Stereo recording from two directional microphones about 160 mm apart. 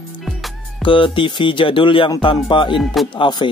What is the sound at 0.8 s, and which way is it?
Speech, 30° left (ahead or behind).